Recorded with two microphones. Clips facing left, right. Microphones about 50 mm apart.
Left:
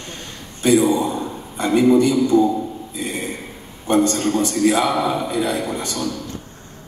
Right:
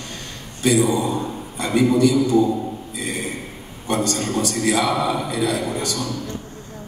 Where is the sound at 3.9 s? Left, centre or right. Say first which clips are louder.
Left 5 dB; left.